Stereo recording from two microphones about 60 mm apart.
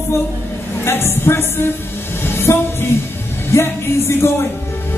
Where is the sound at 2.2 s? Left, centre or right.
Left.